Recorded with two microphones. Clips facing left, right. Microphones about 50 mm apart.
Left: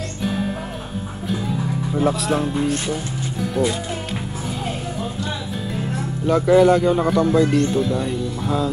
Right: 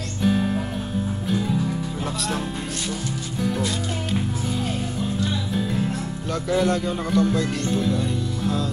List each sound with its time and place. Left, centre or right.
0.2 s music: centre
3.3 s music: centre
5.5 s music: centre
6.2 s speech: centre